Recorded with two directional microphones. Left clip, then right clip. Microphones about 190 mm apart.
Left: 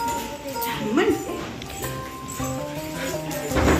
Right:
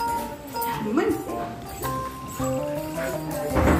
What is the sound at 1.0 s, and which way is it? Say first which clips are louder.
Music: left 3 dB; centre (ahead or behind).